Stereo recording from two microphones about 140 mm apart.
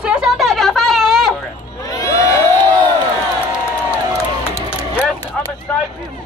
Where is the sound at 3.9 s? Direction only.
20° left (ahead or behind).